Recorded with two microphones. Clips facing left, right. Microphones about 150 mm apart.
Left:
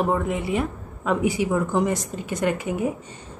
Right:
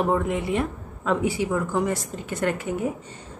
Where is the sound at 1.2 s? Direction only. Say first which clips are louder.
Left 2 dB; 15° left (ahead or behind).